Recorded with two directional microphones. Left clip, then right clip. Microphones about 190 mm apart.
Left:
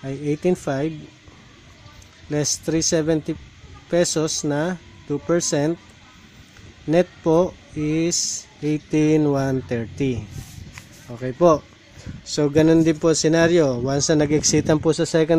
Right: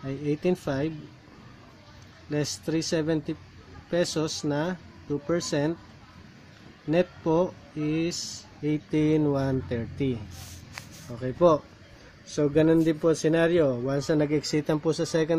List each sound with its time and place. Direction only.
0.0 s speech: 35° left (ahead or behind)
2.2 s speech: 35° left (ahead or behind)
6.9 s speech: 35° left (ahead or behind)